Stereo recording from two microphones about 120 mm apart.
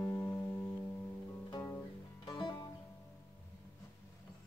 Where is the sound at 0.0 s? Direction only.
20° left (ahead or behind).